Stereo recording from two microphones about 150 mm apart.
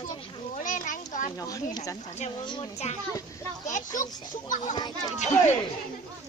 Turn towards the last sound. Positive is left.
turn(degrees=50)  # may be behind; listen again after turning